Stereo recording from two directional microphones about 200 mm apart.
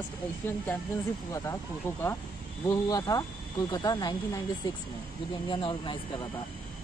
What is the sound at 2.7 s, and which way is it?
Speech, 15° left (ahead or behind).